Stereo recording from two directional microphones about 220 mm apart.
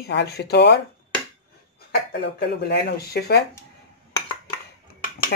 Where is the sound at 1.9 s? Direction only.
45° left (ahead or behind).